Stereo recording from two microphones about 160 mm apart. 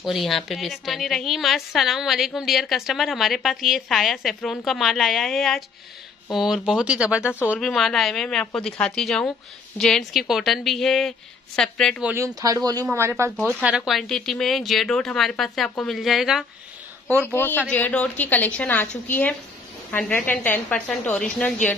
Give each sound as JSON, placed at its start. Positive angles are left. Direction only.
{"t": 0.0, "sound": "a woman's voice", "side_deg": 0}
{"t": 12.0, "sound": "speech", "side_deg": -10}
{"t": 12.4, "sound": "a woman's voice", "side_deg": -25}
{"t": 17.3, "sound": "a woman's voice", "side_deg": 15}